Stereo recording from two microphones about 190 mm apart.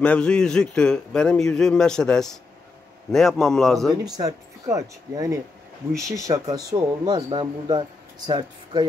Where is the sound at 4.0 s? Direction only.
20° right (ahead or behind).